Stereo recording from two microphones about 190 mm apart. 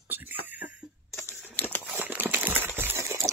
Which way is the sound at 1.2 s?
10° left (ahead or behind).